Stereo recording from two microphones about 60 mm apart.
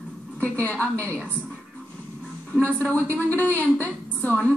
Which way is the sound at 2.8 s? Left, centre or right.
Left.